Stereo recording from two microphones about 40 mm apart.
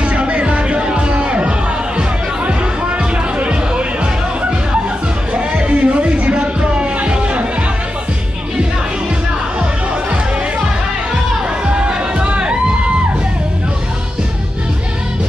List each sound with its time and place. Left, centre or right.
0.0 s music: right
3.3 s music: right
5.3 s music: right
11.6 s music: right